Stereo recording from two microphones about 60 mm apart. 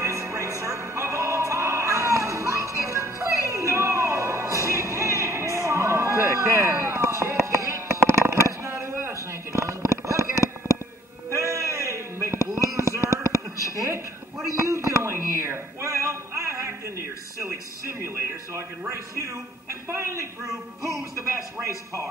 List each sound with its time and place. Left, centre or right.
0.0 s music: right
7.2 s a sound: right
21.6 s a man's voice: right